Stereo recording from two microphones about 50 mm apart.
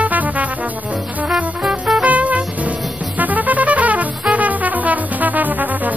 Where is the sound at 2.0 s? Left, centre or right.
Right.